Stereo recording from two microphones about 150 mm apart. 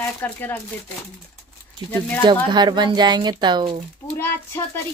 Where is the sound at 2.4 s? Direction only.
30° right (ahead or behind).